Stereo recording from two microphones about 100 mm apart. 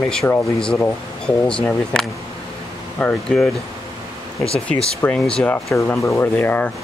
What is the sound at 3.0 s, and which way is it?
Speech, 10° left (ahead or behind).